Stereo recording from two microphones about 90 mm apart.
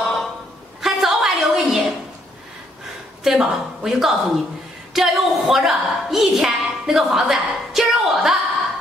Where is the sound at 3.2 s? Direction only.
5° right (ahead or behind).